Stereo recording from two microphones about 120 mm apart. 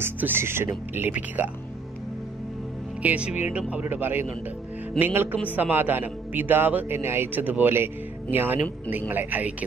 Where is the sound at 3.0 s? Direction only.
10° right (ahead or behind).